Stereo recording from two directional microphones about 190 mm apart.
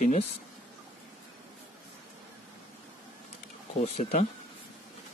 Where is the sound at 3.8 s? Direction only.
35° left (ahead or behind).